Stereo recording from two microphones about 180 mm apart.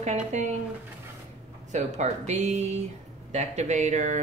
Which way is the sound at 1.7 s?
40° right (ahead or behind).